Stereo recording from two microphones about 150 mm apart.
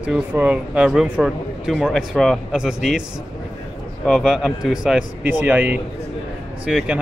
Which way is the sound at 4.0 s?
Centre (ahead or behind).